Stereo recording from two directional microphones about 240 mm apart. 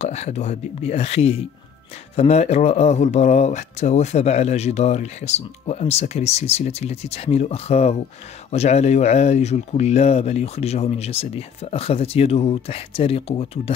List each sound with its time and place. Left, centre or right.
0.0 s speech: left